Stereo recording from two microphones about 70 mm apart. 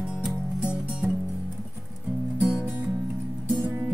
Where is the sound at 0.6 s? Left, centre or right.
Centre.